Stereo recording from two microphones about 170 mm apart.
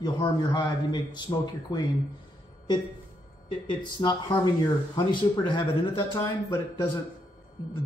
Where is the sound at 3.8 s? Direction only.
25° left (ahead or behind).